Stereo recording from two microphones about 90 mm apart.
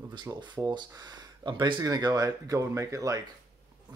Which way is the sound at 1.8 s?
45° right (ahead or behind).